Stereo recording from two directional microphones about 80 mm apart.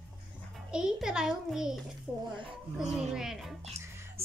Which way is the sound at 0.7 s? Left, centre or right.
Centre.